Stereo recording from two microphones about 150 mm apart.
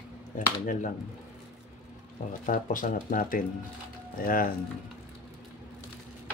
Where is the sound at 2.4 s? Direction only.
60° left (ahead or behind).